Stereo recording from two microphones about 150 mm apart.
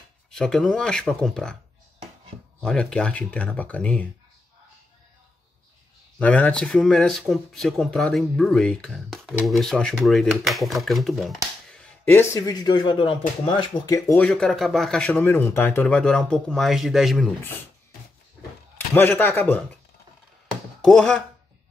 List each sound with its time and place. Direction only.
0.3 s speech: 5° left (ahead or behind)
2.6 s speech: 5° left (ahead or behind)
6.1 s speech: 10° left (ahead or behind)
12.0 s speech: 15° left (ahead or behind)
14.1 s speech: 5° left (ahead or behind)
18.9 s speech: 15° left (ahead or behind)
20.8 s speech: 5° left (ahead or behind)